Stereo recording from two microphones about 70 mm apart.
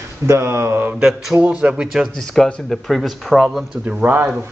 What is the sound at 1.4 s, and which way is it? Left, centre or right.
Speech, centre.